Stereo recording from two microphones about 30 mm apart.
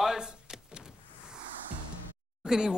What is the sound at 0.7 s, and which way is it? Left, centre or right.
Power windows, right.